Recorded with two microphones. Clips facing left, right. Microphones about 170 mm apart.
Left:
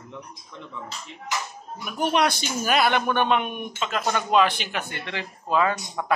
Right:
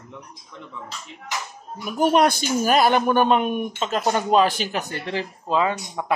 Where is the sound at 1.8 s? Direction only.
45° right (ahead or behind).